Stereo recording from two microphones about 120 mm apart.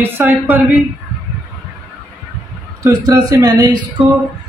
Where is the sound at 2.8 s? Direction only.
30° right (ahead or behind).